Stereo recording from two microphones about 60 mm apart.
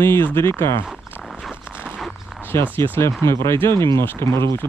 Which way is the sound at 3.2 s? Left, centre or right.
Left.